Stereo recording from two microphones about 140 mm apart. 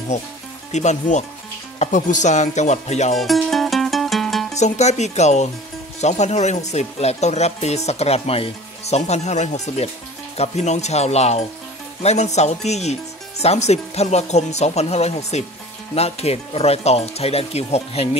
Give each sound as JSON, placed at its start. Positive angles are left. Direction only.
{"t": 0.1, "sound": "speech", "side_deg": 60}
{"t": 3.2, "sound": "music", "side_deg": 0}
{"t": 4.6, "sound": "speech", "side_deg": 55}